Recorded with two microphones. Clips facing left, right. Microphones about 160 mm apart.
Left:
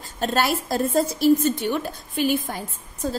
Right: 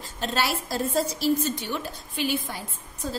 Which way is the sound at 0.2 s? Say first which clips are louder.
Left 5 dB; 50° left (ahead or behind).